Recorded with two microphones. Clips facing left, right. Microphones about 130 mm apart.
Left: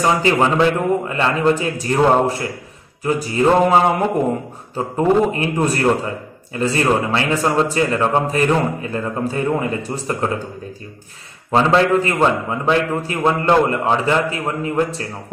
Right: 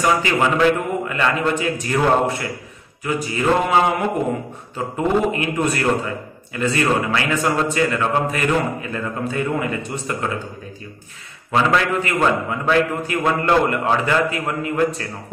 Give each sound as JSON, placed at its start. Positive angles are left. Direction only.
{"t": 0.0, "sound": "a man's voice", "side_deg": 30}
{"t": 11.5, "sound": "a man's voice", "side_deg": 30}